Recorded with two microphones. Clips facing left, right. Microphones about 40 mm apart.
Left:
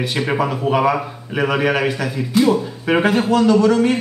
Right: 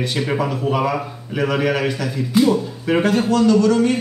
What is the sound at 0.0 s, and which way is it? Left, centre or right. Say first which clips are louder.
A man's voice: left 2 dB; centre.